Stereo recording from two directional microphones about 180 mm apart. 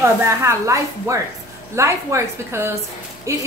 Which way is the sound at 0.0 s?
15° right (ahead or behind).